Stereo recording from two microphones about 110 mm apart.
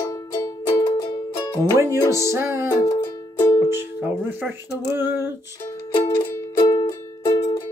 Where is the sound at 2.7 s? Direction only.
30° left (ahead or behind).